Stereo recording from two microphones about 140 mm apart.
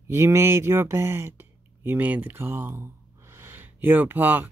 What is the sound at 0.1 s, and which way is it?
Speech, 20° right (ahead or behind).